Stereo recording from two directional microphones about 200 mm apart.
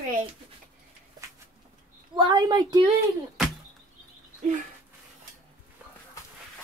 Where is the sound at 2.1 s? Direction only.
20° right (ahead or behind).